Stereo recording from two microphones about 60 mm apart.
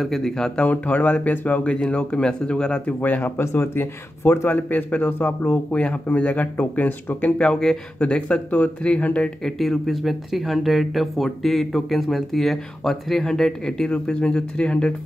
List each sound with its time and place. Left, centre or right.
0.0 s speech: centre
0.6 s speech: left
3.0 s speech: left
3.3 s speech: left
7.3 s speech: centre
9.4 s speech: centre